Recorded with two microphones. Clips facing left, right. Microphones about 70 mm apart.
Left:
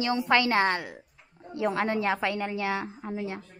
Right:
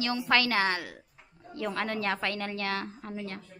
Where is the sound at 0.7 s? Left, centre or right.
Centre.